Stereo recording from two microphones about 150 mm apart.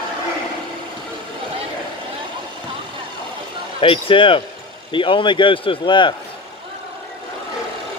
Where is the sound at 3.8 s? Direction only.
35° left (ahead or behind).